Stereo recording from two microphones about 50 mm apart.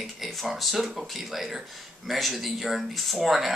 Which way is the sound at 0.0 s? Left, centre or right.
Centre.